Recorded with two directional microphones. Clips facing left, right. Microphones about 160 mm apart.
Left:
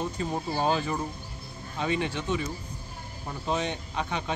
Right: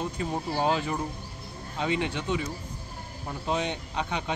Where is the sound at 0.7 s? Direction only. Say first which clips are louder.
Left 1 dB; 15° right (ahead or behind).